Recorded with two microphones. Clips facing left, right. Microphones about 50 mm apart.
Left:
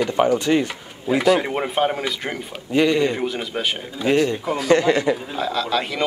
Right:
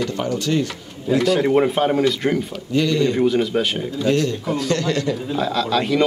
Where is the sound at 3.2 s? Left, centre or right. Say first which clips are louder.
Right 6 dB; centre.